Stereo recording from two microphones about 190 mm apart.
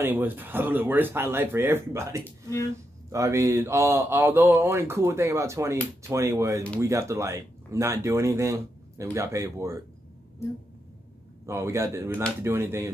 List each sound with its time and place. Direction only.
0.0 s speech: 10° right (ahead or behind)
11.4 s speech: 15° right (ahead or behind)